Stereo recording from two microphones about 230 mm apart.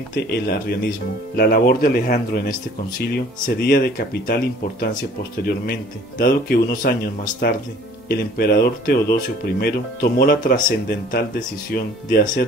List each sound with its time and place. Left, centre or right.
0.1 s speech: left